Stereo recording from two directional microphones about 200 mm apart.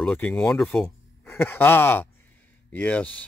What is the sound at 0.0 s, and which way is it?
Speech, 5° left (ahead or behind).